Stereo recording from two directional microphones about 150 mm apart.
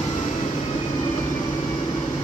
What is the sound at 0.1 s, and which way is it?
Vehicle, 40° left (ahead or behind).